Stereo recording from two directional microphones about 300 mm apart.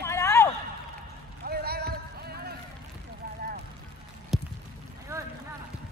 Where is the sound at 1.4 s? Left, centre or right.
Right.